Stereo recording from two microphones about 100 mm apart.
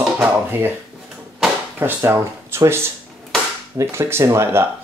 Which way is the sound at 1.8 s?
25° right (ahead or behind).